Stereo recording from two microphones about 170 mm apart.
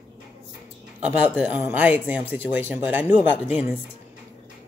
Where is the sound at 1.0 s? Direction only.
5° right (ahead or behind).